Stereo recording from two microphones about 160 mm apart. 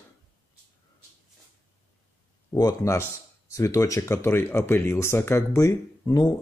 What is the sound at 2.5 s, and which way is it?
Speech, 20° left (ahead or behind).